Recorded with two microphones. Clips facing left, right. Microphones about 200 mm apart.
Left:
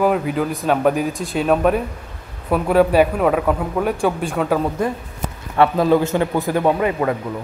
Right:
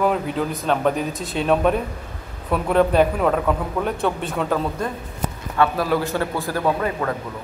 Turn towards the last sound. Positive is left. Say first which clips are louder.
# left 4 dB
turn(degrees=15)  # may be behind; listen again after turning